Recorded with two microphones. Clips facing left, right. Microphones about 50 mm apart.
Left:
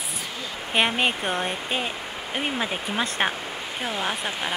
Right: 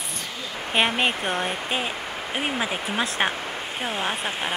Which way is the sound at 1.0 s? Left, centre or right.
Centre.